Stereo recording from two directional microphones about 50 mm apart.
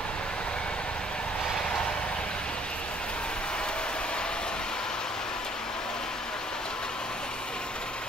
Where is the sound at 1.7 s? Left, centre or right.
Centre.